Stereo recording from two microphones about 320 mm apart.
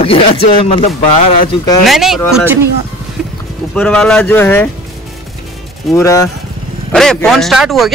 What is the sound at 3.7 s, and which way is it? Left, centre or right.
Speech, centre.